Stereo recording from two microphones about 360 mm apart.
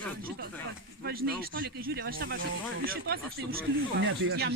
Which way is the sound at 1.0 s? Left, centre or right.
Right.